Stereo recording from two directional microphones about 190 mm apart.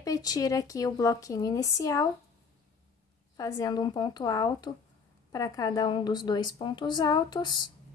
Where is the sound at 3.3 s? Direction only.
20° left (ahead or behind).